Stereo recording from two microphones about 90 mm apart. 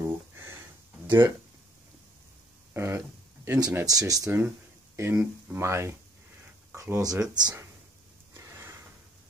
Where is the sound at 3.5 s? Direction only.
45° right (ahead or behind).